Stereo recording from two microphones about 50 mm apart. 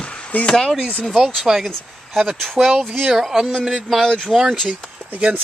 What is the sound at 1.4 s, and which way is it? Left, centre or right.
Speech, centre.